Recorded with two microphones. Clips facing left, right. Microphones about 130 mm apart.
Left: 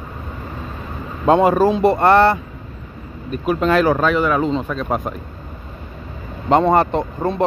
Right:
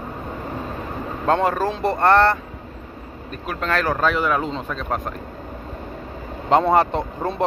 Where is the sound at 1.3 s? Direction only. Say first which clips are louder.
Left 7 dB; 10° left (ahead or behind).